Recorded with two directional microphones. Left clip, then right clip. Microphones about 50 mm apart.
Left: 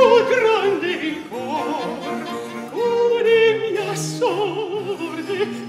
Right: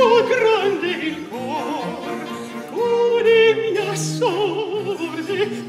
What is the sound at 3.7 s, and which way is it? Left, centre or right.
Opera, right.